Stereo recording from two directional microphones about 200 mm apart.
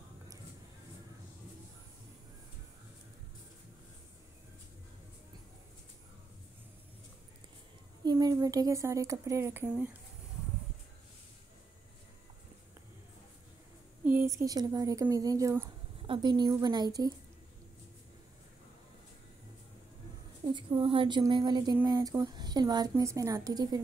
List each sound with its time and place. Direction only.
8.0 s speech: 20° right (ahead or behind)
14.0 s speech: 10° right (ahead or behind)
20.5 s a sound: 25° right (ahead or behind)
21.7 s speech: 20° right (ahead or behind)